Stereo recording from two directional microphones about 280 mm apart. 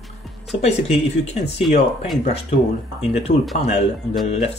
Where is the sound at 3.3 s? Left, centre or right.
Left.